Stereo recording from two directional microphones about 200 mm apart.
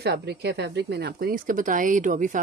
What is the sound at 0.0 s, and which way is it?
Speech, 55° right (ahead or behind).